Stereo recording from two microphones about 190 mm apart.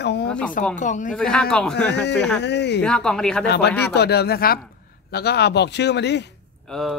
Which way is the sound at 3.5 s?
60° left (ahead or behind).